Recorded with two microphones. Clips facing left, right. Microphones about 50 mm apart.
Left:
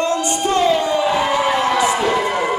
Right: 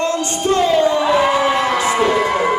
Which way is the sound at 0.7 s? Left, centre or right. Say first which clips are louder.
Right 3 dB; right.